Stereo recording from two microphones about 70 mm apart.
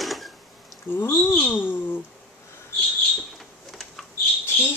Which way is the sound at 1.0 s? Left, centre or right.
Left.